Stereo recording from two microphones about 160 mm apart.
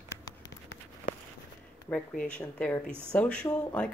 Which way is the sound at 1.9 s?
10° left (ahead or behind).